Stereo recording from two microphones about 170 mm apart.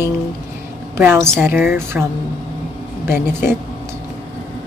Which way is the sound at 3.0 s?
15° right (ahead or behind).